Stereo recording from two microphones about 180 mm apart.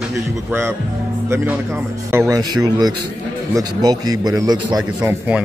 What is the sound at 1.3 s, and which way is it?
A man's voice, 10° right (ahead or behind).